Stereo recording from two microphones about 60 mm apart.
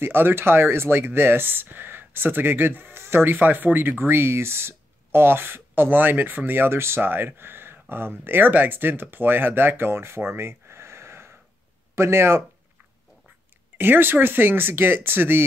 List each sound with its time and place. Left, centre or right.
0.0 s speech: right
13.7 s speech: right